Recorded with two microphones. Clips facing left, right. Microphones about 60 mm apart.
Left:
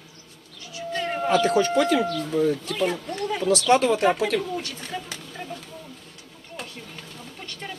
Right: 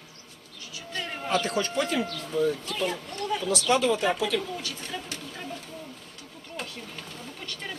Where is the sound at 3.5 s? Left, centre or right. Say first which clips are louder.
Left 5 dB; left.